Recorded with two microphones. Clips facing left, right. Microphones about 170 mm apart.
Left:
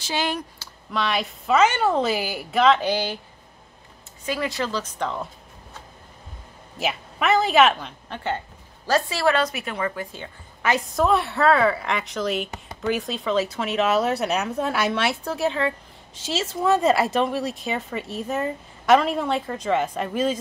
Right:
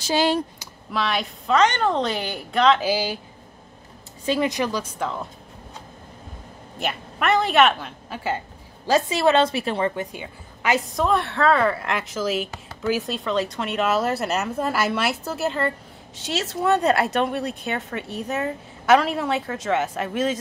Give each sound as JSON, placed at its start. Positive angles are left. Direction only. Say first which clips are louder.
{"t": 0.0, "sound": "speech", "louder": "right 6 dB", "side_deg": -35}
{"t": 0.6, "sound": "a sound", "louder": "right 2 dB", "side_deg": -15}
{"t": 0.9, "sound": "speech", "louder": "even", "side_deg": 0}
{"t": 4.3, "sound": "a woman's voice", "louder": "right 4 dB", "side_deg": -20}
{"t": 6.8, "sound": "speech", "louder": "left 1 dB", "side_deg": 0}
{"t": 8.8, "sound": "a woman's voice", "louder": "right 2 dB", "side_deg": -20}
{"t": 10.1, "sound": "a woman's voice", "louder": "right 2 dB", "side_deg": -15}
{"t": 10.8, "sound": "speech", "louder": "left 1 dB", "side_deg": 0}